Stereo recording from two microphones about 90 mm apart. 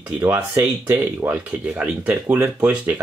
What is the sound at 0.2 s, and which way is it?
Speech, 25° right (ahead or behind).